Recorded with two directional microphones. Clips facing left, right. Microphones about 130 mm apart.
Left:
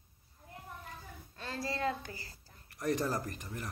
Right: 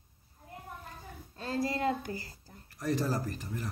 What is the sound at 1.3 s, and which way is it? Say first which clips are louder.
Child singing: right 7 dB; 40° right (ahead or behind).